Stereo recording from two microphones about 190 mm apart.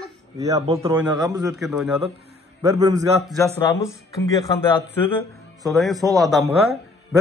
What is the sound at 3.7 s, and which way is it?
Speech, 15° left (ahead or behind).